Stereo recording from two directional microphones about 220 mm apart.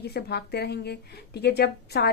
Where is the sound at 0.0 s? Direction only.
45° left (ahead or behind).